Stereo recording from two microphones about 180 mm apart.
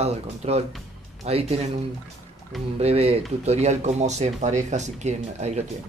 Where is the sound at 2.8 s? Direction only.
35° right (ahead or behind).